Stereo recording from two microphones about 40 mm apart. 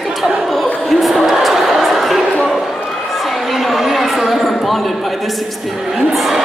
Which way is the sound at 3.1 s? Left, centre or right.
Centre.